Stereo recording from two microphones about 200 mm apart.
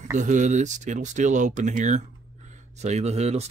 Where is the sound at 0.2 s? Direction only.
40° right (ahead or behind).